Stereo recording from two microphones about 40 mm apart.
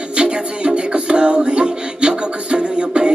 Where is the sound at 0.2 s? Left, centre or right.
Right.